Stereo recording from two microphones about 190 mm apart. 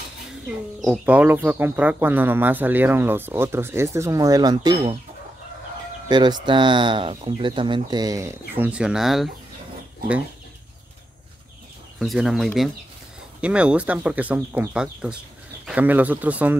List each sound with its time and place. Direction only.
0.3 s speech: 5° right (ahead or behind); by 4.9 s 20° right (ahead or behind)
6.0 s speech: 20° right (ahead or behind); by 9.3 s centre (ahead or behind)
12.0 s speech: centre (ahead or behind)